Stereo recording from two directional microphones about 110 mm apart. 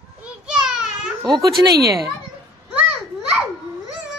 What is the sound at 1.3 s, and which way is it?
Speech, 35° right (ahead or behind).